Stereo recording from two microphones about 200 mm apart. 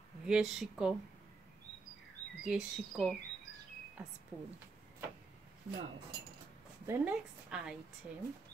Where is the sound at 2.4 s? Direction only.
Centre (ahead or behind).